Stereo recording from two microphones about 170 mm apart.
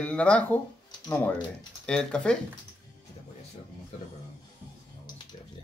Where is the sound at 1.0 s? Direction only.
20° left (ahead or behind).